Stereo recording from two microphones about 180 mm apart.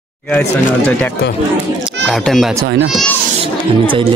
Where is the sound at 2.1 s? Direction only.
Centre (ahead or behind).